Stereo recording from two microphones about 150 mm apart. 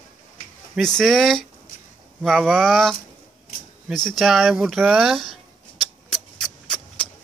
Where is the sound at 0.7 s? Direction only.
5° left (ahead or behind).